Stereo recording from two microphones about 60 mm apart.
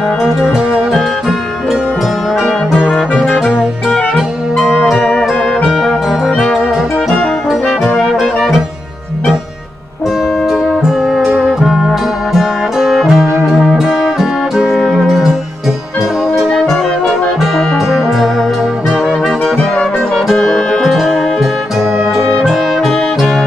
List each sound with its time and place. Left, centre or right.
0.4 s music: centre
2.4 s music: centre
4.6 s music: centre
4.9 s music: centre
5.2 s music: centre
8.2 s music: centre
10.8 s music: centre
17.4 s brass instrument: centre
20.2 s music: centre